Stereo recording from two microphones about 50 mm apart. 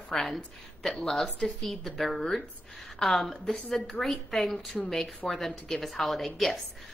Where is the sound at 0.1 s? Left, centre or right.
Centre.